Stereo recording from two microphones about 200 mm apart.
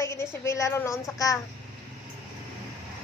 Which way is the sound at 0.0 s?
15° left (ahead or behind).